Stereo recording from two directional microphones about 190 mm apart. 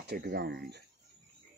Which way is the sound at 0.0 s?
55° right (ahead or behind).